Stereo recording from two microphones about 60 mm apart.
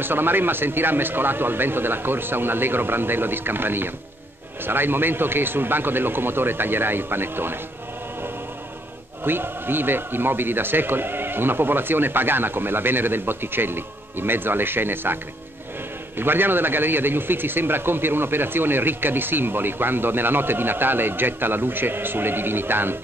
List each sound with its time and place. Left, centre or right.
0.0 s a man's voice: right
9.2 s a man's voice: right
16.2 s a man's voice: right